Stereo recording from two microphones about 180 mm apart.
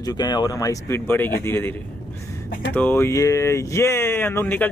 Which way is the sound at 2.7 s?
10° left (ahead or behind).